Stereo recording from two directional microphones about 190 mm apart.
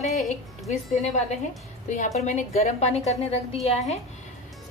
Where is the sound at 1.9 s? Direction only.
40° left (ahead or behind).